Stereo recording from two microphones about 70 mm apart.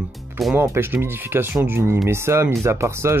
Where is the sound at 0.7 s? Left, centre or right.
Right.